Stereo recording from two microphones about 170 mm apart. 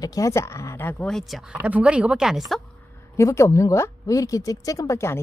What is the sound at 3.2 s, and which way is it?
Speech, 15° left (ahead or behind).